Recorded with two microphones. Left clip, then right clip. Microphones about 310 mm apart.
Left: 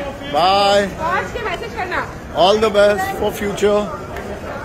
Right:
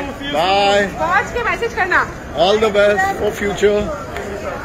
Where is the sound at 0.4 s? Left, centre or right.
Centre.